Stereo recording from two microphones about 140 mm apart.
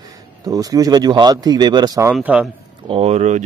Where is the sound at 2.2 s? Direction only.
10° right (ahead or behind).